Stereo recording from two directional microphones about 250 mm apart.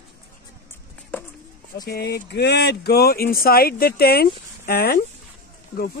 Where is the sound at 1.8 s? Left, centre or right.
Left.